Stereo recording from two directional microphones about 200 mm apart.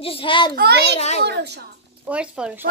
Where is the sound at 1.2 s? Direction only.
55° right (ahead or behind).